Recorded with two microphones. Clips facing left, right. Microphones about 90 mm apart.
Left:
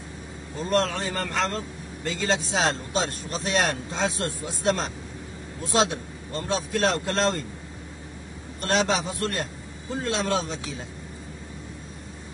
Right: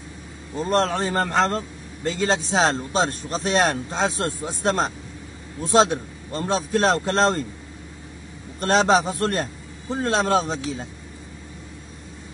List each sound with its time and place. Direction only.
0.6 s speech: 35° right (ahead or behind)
8.5 s speech: 35° right (ahead or behind)